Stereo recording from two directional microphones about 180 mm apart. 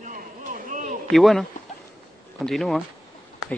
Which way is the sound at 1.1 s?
Centre (ahead or behind).